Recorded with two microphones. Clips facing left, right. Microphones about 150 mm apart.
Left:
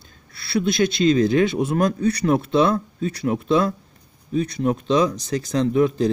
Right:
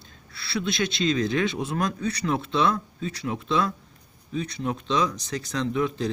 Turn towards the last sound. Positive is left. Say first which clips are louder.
# left 7 dB
turn(degrees=40)  # may be behind; listen again after turning